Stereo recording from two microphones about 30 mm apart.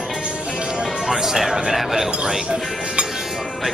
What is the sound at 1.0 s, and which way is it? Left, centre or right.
Speech, centre.